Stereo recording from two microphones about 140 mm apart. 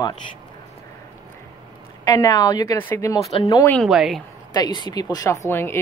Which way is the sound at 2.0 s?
25° left (ahead or behind).